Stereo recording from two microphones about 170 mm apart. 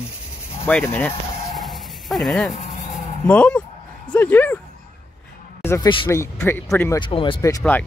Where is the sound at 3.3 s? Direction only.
5° left (ahead or behind).